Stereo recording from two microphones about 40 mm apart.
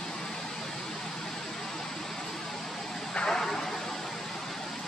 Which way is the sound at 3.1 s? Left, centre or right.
Left.